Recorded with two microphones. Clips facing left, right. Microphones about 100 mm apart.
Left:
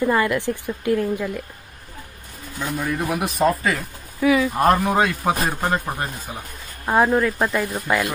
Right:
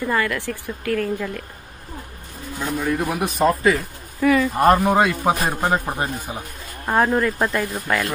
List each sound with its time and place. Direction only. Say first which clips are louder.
0.0 s speech: left 3 dB; 20° left (ahead or behind)
3.1 s speech: left 1 dB; centre (ahead or behind)
5.7 s speech: right 2 dB; 15° right (ahead or behind)
6.9 s speech: left 1 dB; 5° left (ahead or behind)
7.7 s speech: left 1 dB; 10° left (ahead or behind)